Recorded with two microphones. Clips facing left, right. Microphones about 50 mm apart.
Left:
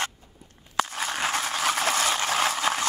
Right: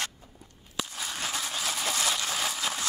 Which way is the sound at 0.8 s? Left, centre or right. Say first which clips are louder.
Left 8 dB; left.